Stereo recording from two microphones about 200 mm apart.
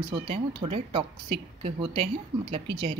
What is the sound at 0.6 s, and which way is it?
Speech, 30° right (ahead or behind).